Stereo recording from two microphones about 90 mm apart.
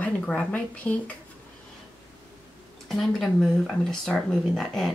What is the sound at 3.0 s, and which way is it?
Speech, 5° left (ahead or behind).